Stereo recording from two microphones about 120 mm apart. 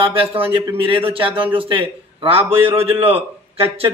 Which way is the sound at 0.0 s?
50° right (ahead or behind).